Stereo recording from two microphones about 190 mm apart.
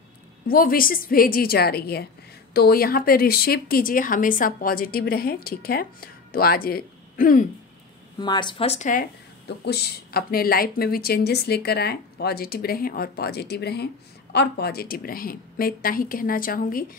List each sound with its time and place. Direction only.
0.5 s speech: 50° left (ahead or behind)
8.2 s speech: 25° left (ahead or behind); by 9.0 s 40° left (ahead or behind)
9.7 s a woman's voice: 55° left (ahead or behind)